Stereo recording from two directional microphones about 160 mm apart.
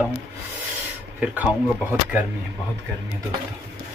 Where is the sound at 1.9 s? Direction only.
10° right (ahead or behind).